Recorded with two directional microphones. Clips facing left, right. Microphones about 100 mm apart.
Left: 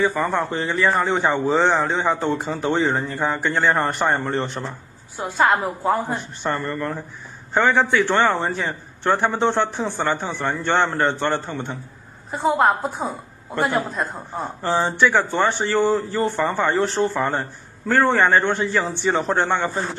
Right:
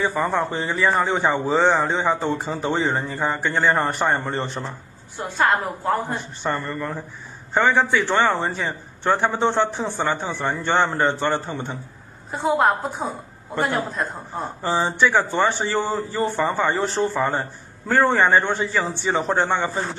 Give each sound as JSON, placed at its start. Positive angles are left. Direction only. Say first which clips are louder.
{"t": 0.0, "sound": "a man's voice", "louder": "left 1 dB", "side_deg": 0}